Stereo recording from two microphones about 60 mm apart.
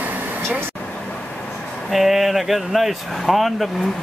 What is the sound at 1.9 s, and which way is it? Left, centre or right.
Speech, centre.